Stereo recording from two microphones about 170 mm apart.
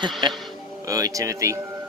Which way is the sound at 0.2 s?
25° right (ahead or behind).